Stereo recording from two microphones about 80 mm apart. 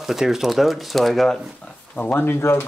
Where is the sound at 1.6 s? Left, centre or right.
Centre.